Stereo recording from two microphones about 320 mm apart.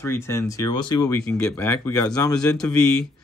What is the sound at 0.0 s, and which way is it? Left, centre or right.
Speech, centre.